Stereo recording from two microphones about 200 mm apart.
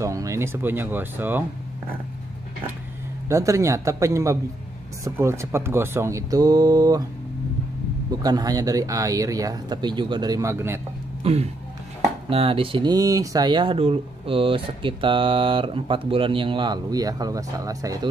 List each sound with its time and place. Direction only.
0.0 s speech: 15° right (ahead or behind)
3.3 s speech: 15° right (ahead or behind)
8.2 s speech: 20° right (ahead or behind)
11.2 s speech: 30° right (ahead or behind)